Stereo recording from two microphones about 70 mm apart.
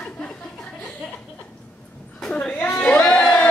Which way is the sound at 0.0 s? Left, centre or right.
Centre.